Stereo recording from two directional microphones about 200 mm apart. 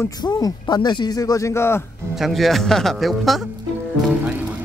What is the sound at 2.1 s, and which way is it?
Speech, centre (ahead or behind).